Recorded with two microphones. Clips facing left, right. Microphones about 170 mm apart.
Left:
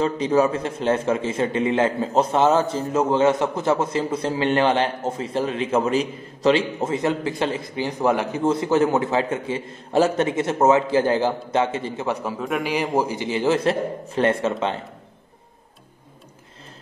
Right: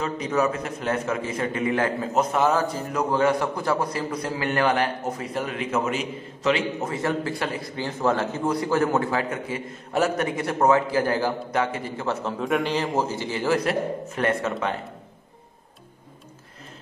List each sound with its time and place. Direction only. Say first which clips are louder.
0.0 s a man's voice: left 5 dB; 30° left (ahead or behind); by 12.7 s centre (ahead or behind)
12.7 s a man's voice: left 3 dB; 15° left (ahead or behind)